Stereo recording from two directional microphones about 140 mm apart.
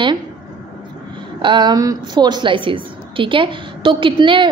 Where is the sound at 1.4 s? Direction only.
35° right (ahead or behind).